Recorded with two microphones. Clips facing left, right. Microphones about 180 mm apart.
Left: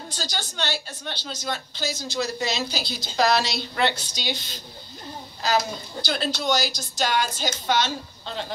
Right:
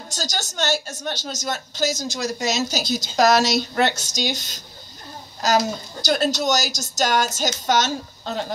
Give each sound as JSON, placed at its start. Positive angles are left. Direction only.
{"t": 0.1, "sound": "a woman's voice", "side_deg": -45}